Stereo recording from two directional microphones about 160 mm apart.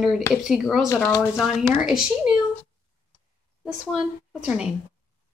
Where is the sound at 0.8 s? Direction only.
20° left (ahead or behind).